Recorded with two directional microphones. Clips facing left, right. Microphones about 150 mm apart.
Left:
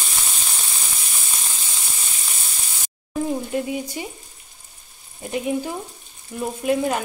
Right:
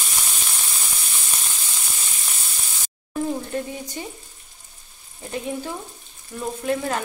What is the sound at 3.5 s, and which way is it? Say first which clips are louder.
Frying: left 4 dB; 10° left (ahead or behind).